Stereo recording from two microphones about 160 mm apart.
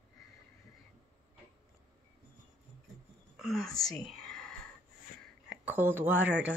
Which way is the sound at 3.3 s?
Centre (ahead or behind).